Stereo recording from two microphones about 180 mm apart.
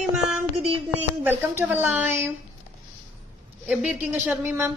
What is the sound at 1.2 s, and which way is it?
A woman's voice, 10° right (ahead or behind).